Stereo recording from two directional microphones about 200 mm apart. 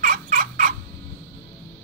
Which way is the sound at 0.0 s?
45° right (ahead or behind).